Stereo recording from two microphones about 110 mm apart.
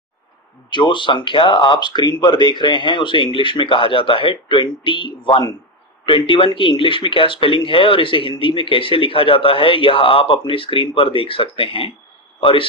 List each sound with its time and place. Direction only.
0.7 s a man's voice: 45° left (ahead or behind)